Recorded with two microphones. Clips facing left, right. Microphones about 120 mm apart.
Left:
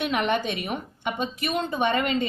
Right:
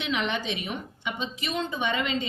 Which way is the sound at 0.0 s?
50° left (ahead or behind).